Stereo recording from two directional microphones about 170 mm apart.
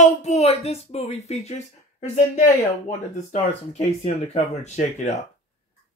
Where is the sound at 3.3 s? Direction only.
40° left (ahead or behind).